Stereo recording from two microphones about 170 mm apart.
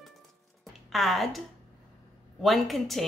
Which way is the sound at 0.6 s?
Centre (ahead or behind).